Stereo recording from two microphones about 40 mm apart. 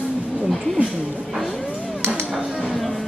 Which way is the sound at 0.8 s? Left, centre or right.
Right.